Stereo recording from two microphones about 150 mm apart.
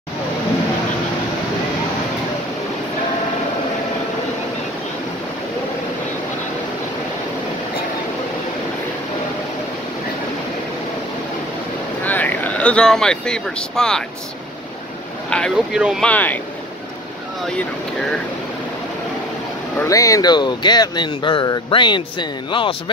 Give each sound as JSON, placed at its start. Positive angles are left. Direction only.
{"t": 12.0, "sound": "speech", "side_deg": 10}
{"t": 15.2, "sound": "speech", "side_deg": 5}
{"t": 15.7, "sound": "speech", "side_deg": -5}
{"t": 16.0, "sound": "speech", "side_deg": 10}
{"t": 19.8, "sound": "speech", "side_deg": 20}